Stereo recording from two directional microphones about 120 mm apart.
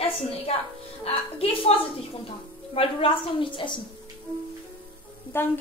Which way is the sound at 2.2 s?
50° left (ahead or behind).